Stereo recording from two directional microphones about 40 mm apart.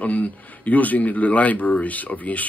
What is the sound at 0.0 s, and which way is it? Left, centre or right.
A man's voice, left.